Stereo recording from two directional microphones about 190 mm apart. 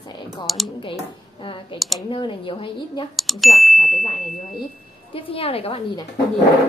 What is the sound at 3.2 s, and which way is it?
Speech, centre (ahead or behind).